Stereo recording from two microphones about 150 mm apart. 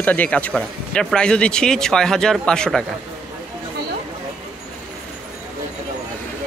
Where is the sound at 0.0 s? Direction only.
10° left (ahead or behind).